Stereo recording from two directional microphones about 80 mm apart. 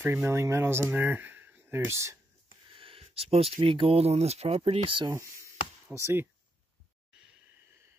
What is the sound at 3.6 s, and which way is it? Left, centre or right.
Speech, right.